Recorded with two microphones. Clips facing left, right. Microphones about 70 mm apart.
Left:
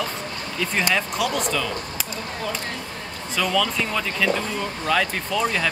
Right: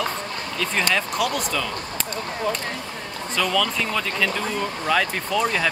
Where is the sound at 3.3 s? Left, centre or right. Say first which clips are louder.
Even; centre.